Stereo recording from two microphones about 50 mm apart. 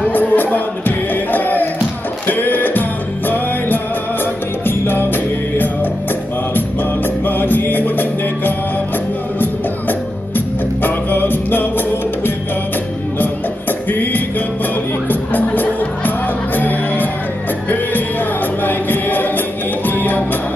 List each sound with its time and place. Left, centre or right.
0.1 s music: left
7.2 s music: left
13.8 s music: left
18.6 s music: left